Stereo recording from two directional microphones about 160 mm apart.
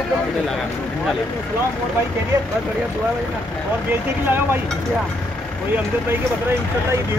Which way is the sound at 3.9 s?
15° right (ahead or behind).